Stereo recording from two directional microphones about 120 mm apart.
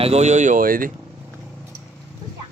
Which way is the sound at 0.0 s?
65° right (ahead or behind).